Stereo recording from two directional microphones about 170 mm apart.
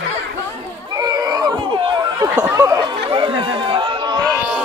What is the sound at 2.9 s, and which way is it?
Chatter, 35° right (ahead or behind).